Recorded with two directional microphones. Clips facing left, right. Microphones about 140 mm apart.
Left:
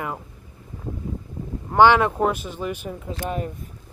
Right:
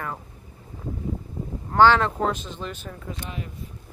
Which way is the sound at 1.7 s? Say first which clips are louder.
Left 2 dB; 10° left (ahead or behind).